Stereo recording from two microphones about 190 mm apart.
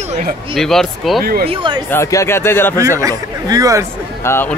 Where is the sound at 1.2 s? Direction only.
50° right (ahead or behind).